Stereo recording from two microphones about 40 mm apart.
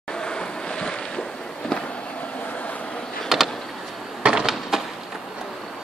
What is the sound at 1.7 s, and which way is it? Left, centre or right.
Fireworks, left.